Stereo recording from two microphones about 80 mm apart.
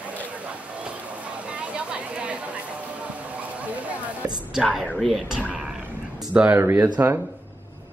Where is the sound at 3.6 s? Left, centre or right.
Centre.